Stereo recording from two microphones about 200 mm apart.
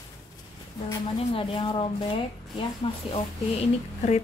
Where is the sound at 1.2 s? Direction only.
25° left (ahead or behind).